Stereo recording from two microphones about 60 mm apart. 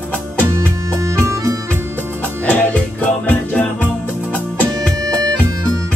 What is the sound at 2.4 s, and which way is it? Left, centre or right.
Music, left.